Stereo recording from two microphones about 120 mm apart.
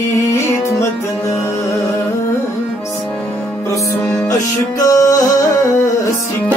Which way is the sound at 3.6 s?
25° left (ahead or behind).